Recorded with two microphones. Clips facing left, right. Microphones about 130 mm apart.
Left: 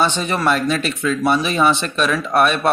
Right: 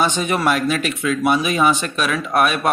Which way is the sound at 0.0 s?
10° right (ahead or behind).